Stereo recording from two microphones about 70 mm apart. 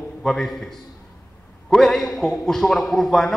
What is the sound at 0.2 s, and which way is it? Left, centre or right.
A man's voice, centre.